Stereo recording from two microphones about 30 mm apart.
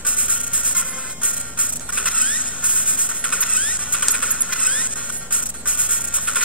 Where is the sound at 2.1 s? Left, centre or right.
Left.